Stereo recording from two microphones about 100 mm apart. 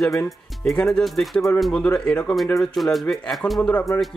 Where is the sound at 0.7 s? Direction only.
5° left (ahead or behind).